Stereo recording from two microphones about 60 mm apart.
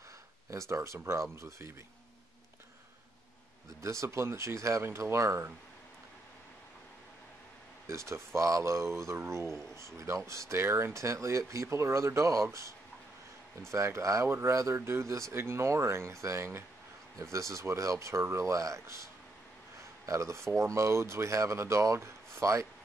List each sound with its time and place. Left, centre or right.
0.5 s speech: right
3.8 s speech: right
7.8 s speech: right
20.1 s speech: right